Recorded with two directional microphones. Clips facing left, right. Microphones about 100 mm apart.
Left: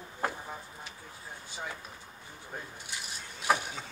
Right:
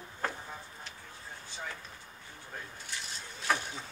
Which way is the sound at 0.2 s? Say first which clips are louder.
Left 2 dB; 15° left (ahead or behind).